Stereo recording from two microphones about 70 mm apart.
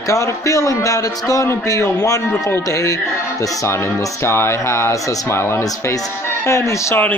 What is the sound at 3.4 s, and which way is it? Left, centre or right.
Speech, left.